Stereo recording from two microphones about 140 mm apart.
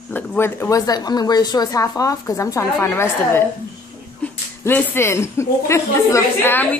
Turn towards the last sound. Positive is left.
turn(degrees=15)  # may be behind; listen again after turning